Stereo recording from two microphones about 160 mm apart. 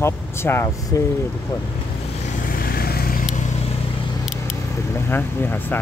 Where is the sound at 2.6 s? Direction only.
70° left (ahead or behind).